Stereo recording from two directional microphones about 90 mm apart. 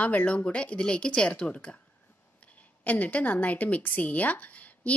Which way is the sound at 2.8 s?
15° left (ahead or behind).